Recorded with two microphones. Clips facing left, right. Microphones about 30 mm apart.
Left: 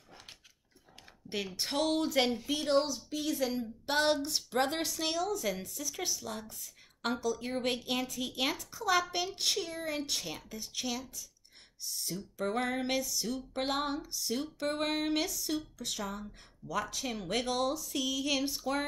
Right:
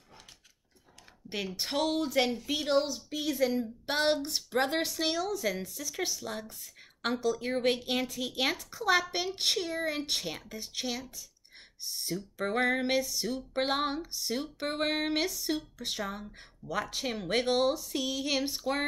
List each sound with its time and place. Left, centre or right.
1.3 s speech: centre
2.9 s speech: centre
8.4 s a sound: right